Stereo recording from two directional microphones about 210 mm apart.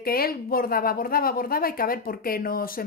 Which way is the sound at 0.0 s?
45° left (ahead or behind).